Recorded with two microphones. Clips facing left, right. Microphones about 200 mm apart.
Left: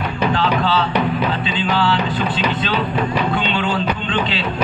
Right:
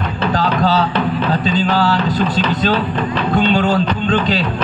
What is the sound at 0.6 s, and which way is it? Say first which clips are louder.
Music: right 2 dB; 40° right (ahead or behind).